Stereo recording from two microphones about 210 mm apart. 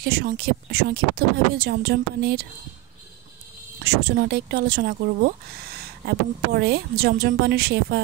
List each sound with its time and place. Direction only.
0.0 s speech: 50° right (ahead or behind)
3.8 s speech: 55° right (ahead or behind)